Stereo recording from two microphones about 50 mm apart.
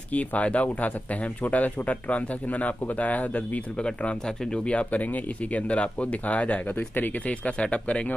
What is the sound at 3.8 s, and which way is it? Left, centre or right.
Speech, centre.